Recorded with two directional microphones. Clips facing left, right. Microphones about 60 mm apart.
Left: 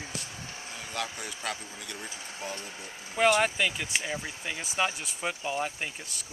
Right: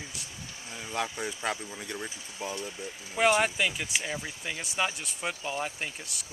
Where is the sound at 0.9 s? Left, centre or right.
Right.